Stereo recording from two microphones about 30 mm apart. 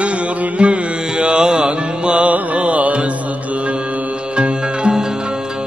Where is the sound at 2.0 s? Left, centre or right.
Right.